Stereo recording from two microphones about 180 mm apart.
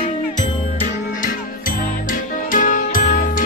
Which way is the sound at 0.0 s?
45° left (ahead or behind).